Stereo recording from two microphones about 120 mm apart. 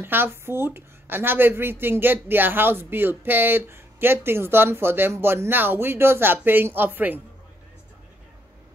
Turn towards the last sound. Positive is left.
turn(degrees=-15)  # may be behind; listen again after turning